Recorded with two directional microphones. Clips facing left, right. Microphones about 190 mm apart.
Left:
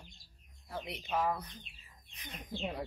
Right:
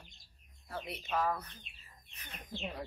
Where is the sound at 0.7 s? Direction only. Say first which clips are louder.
Left 1 dB; 15° left (ahead or behind).